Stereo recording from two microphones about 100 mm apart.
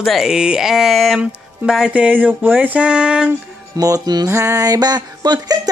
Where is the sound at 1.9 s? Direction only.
15° right (ahead or behind).